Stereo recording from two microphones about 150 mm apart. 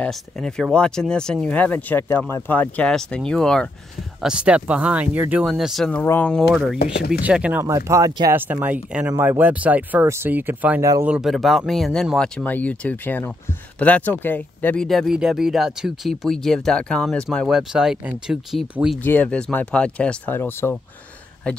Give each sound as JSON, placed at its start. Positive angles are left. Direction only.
{"t": 0.0, "sound": "speech", "side_deg": 5}
{"t": 4.2, "sound": "speech", "side_deg": -5}
{"t": 5.9, "sound": "speech", "side_deg": 10}
{"t": 7.2, "sound": "speech", "side_deg": -10}
{"t": 7.6, "sound": "speech", "side_deg": -20}
{"t": 14.9, "sound": "speech", "side_deg": 0}
{"t": 19.0, "sound": "speech", "side_deg": 10}